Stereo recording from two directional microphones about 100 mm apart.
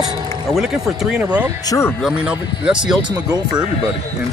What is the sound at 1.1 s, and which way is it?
Speech, 15° right (ahead or behind).